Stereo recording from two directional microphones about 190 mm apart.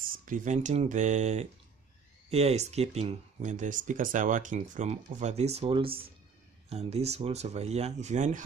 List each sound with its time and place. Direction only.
0.0 s speech: 45° right (ahead or behind)